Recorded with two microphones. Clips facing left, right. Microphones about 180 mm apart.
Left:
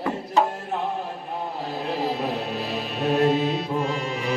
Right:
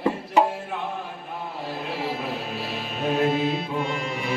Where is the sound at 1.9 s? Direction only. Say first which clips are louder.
Left 4 dB; 35° left (ahead or behind).